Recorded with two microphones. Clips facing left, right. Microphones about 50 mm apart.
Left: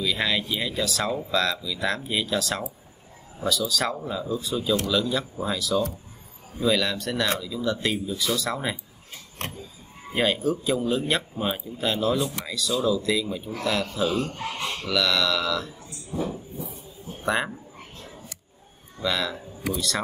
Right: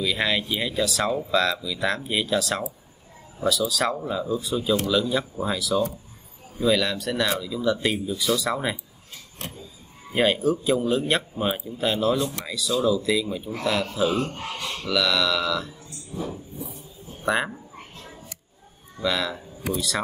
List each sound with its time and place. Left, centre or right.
0.0 s speech: centre
4.7 s a man's voice: right
5.4 s speech: centre
9.4 s a sound: left
10.1 s speech: centre
14.4 s speech: left
14.9 s speech: centre
16.1 s a sound: left
17.2 s speech: centre
18.9 s speech: centre